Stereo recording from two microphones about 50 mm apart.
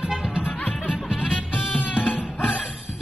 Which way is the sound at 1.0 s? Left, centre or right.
Centre.